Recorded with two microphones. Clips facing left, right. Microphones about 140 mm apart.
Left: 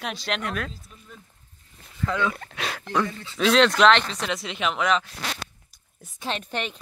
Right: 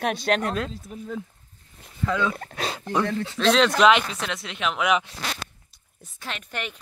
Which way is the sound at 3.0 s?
70° right (ahead or behind).